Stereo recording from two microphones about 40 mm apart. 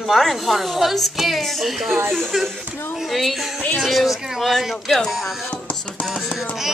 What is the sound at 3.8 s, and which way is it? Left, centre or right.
A woman's voice, centre.